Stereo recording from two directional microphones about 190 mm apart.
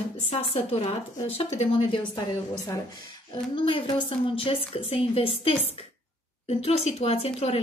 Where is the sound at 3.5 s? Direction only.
30° left (ahead or behind).